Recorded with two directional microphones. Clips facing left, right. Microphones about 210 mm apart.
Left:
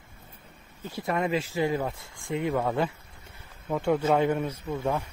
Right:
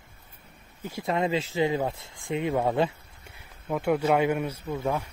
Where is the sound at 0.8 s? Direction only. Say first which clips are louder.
Right 1 dB; 15° right (ahead or behind).